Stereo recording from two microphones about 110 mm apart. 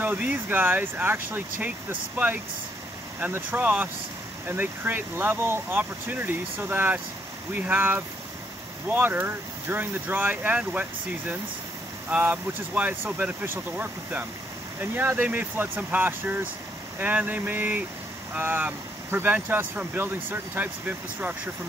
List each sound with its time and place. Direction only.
0.0 s speech: 15° right (ahead or behind)